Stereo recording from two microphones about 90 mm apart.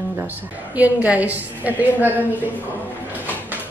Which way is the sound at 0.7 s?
15° right (ahead or behind).